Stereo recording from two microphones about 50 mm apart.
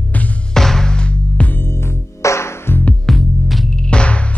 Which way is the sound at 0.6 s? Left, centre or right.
Centre.